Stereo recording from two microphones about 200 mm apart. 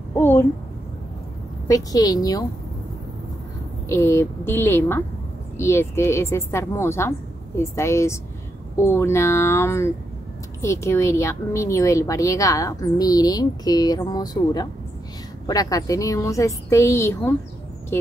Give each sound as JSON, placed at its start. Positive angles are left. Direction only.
{"t": 0.2, "sound": "a child's voice", "side_deg": 10}
{"t": 1.7, "sound": "a woman's voice", "side_deg": 20}
{"t": 3.9, "sound": "a woman's voice", "side_deg": 10}